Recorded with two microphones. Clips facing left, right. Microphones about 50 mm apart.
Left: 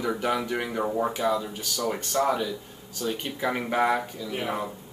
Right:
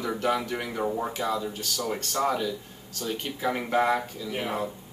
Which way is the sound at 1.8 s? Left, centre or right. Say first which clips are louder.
Left 2 dB; centre.